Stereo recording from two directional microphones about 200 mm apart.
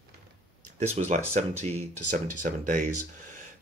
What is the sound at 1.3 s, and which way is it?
Speech, 30° right (ahead or behind).